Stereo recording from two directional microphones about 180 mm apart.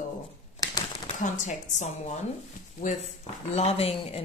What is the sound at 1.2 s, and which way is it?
Speech, 45° left (ahead or behind).